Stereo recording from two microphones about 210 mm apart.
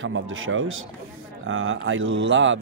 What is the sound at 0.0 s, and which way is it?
A man's voice, 70° right (ahead or behind).